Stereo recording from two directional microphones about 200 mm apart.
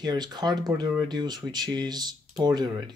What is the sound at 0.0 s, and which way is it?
Speech, 20° right (ahead or behind).